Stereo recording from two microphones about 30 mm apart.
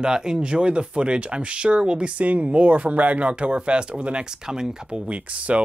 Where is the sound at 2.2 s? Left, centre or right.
Right.